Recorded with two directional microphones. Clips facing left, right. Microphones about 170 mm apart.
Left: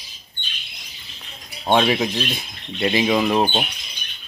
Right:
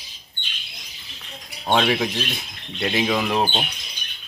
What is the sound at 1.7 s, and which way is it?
Speech, 5° left (ahead or behind).